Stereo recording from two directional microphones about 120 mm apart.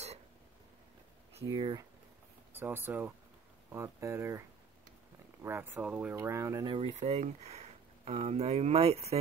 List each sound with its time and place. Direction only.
1.5 s speech: 35° right (ahead or behind)
2.5 s speech: 20° right (ahead or behind)
6.1 s speech: 25° right (ahead or behind)
6.6 s speech: 40° right (ahead or behind)
6.9 s speech: 65° right (ahead or behind)